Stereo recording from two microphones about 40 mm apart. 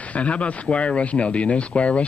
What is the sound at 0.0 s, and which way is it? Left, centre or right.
A man's voice, left.